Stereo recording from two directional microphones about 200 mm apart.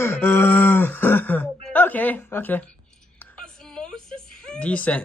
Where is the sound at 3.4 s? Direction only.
5° left (ahead or behind).